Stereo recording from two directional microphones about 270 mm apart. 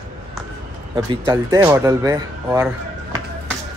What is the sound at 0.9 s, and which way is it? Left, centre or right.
Speech, centre.